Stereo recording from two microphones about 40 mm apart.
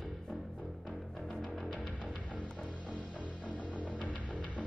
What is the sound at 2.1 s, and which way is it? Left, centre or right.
Music, left.